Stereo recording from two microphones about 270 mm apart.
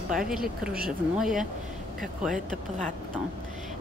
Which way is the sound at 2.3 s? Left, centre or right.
Right.